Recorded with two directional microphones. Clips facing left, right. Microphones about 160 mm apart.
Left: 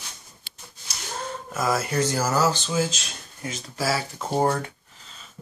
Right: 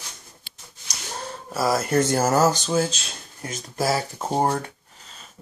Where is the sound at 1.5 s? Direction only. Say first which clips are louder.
Right 4 dB; 35° right (ahead or behind).